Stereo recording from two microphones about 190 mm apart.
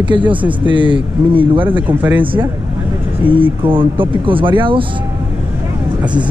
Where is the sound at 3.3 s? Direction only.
25° right (ahead or behind).